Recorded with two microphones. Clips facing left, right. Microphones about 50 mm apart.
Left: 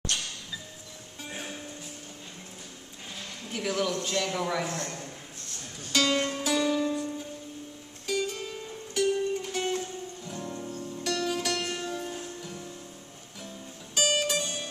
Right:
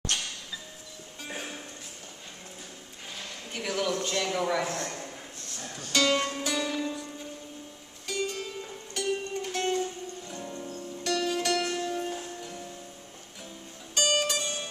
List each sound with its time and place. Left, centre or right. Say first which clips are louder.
1.3 s music: right 1 dB; centre
3.5 s a man's voice: left 1 dB; centre
4.7 s a man's voice: right 1 dB; centre
5.9 s a man's voice: even; centre
6.4 s music: left 3 dB; centre
8.1 s music: left 2 dB; centre
13.9 s music: even; centre